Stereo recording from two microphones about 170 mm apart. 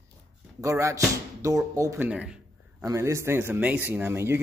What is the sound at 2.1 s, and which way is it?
Speech, 5° right (ahead or behind).